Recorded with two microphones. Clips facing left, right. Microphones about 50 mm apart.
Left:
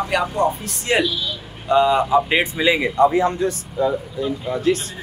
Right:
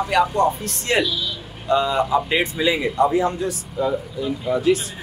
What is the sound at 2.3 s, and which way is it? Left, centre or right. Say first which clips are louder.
Speech: left 2 dB; left.